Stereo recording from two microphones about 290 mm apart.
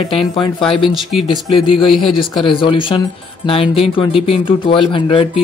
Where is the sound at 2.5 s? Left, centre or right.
Centre.